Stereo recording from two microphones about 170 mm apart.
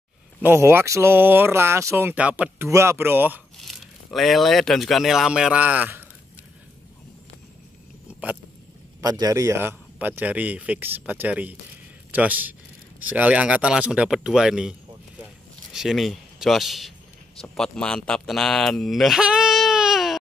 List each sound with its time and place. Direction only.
0.4 s speech: 15° right (ahead or behind)
3.5 s speech: centre (ahead or behind)
8.1 s a sound: 5° right (ahead or behind)
9.0 s a man's voice: 20° right (ahead or behind); by 20.2 s centre (ahead or behind)